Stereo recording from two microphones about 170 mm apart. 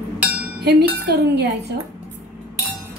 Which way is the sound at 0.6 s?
70° right (ahead or behind).